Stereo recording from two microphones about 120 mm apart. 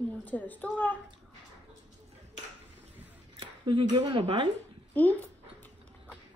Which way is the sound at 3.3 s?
40° right (ahead or behind).